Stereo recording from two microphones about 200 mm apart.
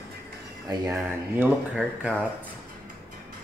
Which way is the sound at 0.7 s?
10° right (ahead or behind).